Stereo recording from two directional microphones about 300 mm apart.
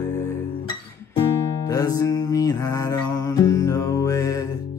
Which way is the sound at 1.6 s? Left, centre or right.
Centre.